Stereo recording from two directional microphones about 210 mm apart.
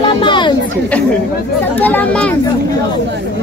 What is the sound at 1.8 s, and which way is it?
Speech, 10° left (ahead or behind).